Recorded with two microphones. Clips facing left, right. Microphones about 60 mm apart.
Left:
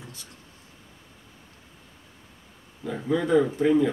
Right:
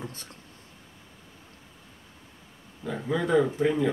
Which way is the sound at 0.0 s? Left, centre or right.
Right.